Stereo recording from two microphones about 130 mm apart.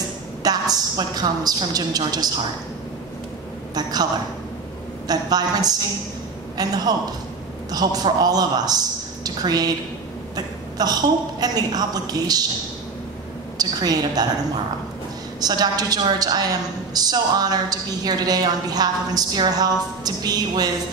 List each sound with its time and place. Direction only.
0.4 s a woman's voice: 30° right (ahead or behind)
3.7 s a woman's voice: 30° right (ahead or behind)
13.6 s a woman's voice: 30° right (ahead or behind)
15.4 s a woman's voice: 30° right (ahead or behind)